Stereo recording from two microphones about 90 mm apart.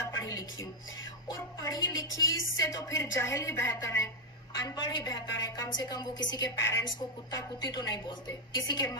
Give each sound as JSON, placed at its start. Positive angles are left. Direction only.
{"t": 0.0, "sound": "dishes", "side_deg": 45}
{"t": 1.3, "sound": "a woman's voice", "side_deg": 40}